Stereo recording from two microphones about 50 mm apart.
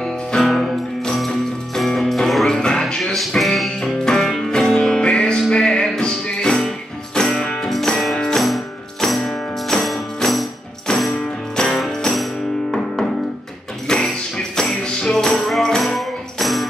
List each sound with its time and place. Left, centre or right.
0.0 s music: centre
10.9 s music: centre